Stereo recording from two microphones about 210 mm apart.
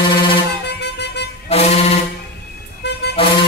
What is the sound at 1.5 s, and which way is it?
Music, 30° left (ahead or behind).